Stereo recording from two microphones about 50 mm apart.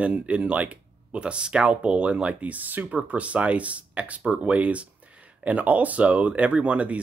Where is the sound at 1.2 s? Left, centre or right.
Centre.